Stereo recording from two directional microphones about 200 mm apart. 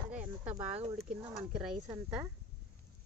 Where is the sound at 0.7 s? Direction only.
30° right (ahead or behind).